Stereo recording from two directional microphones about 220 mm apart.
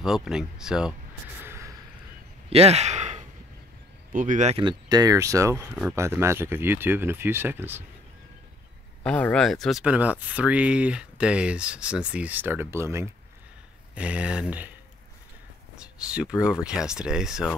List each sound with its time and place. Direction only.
0.0 s speech: 5° right (ahead or behind)
1.4 s a sound: 10° right (ahead or behind)
2.5 s sigh: 30° right (ahead or behind)
4.1 s speech: 35° right (ahead or behind); by 7.8 s 10° right (ahead or behind)
9.0 s speech: 5° left (ahead or behind)
15.7 s speech: 5° right (ahead or behind)